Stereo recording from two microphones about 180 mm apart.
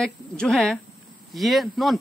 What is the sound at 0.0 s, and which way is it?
Speech, 5° left (ahead or behind).